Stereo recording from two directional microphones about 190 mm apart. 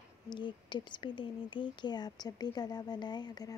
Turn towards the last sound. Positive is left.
turn(degrees=20)  # may be behind; listen again after turning